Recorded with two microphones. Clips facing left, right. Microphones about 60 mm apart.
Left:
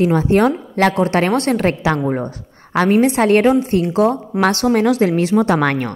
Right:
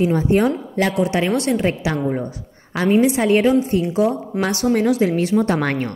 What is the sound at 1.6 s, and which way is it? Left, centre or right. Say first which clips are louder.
A woman's voice: left 3 dB; left.